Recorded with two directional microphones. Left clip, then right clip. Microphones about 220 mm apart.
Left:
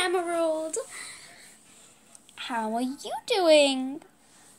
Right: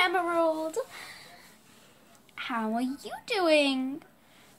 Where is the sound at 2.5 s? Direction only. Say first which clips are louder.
Left 2 dB; 5° left (ahead or behind).